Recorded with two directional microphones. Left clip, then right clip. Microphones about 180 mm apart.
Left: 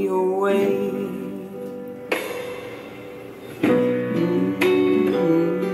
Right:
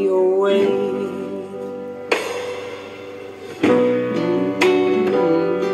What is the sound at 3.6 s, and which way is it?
Music, 30° right (ahead or behind).